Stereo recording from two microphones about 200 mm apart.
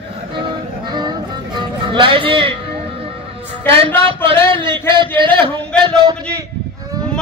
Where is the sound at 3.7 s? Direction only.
25° right (ahead or behind).